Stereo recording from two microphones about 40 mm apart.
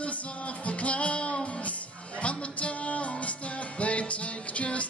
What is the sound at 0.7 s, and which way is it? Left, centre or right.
Music, left.